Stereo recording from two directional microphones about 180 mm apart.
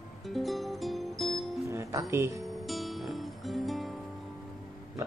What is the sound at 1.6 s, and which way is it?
Music, 15° right (ahead or behind).